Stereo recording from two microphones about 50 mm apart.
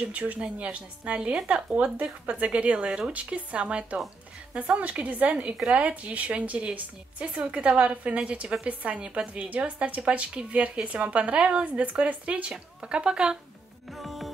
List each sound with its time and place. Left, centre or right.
0.1 s a woman's voice: right
13.9 s music: centre